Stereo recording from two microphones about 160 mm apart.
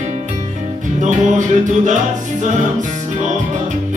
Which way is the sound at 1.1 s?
50° right (ahead or behind).